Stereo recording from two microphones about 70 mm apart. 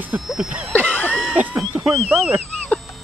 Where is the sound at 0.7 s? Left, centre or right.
Left.